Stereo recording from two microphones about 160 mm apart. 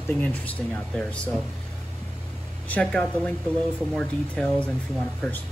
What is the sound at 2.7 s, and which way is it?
Speech, 10° left (ahead or behind).